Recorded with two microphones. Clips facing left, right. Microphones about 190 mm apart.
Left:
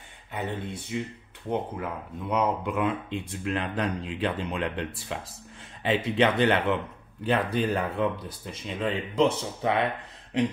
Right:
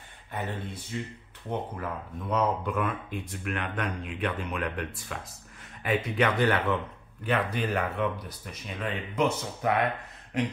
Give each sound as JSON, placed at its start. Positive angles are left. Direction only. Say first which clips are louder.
{"t": 0.9, "sound": "speech", "louder": "left 4 dB", "side_deg": 15}